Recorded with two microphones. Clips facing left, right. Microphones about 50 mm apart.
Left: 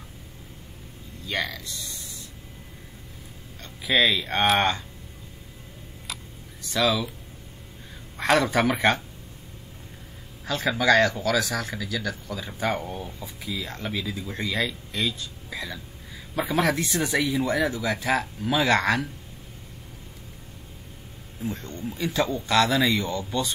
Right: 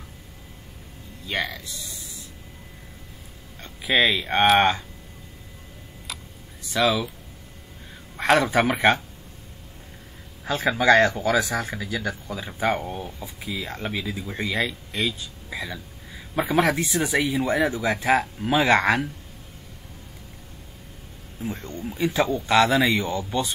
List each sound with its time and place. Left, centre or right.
1.2 s speech: centre
3.6 s speech: right
6.1 s a sound: centre
6.6 s speech: centre
8.2 s speech: centre
10.4 s speech: right
17.3 s speech: right
21.4 s speech: centre